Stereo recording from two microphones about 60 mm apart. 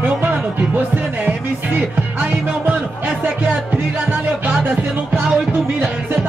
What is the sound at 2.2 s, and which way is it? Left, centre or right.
Music, right.